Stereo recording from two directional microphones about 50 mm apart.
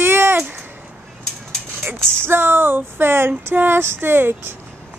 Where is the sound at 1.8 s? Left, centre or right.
Right.